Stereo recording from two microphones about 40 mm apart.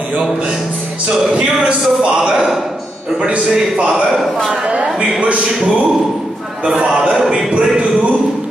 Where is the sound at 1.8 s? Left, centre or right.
Centre.